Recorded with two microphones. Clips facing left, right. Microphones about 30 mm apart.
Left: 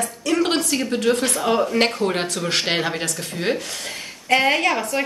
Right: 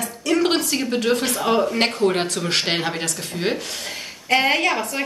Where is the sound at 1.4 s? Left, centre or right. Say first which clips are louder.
Even; centre.